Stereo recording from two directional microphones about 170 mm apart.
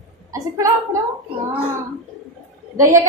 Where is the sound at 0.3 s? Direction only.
20° right (ahead or behind).